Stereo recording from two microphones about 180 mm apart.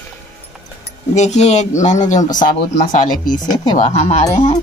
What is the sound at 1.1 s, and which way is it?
Speech, 40° left (ahead or behind).